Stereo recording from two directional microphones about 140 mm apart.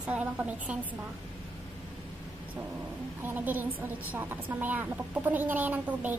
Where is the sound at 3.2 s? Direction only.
15° right (ahead or behind).